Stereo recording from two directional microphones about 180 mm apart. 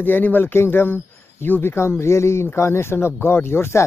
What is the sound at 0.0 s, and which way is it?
Speech, 10° left (ahead or behind).